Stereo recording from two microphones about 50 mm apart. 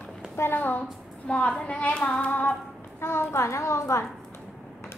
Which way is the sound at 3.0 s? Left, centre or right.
Left.